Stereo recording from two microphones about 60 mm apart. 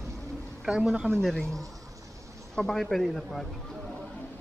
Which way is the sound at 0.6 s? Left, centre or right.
Centre.